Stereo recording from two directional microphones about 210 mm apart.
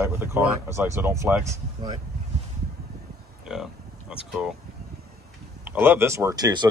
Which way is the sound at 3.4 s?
Centre (ahead or behind).